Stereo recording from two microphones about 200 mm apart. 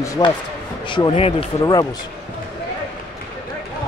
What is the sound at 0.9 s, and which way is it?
Speech, 25° left (ahead or behind).